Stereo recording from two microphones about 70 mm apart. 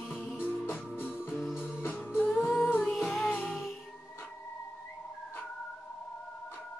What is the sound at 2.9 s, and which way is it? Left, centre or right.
Music, centre.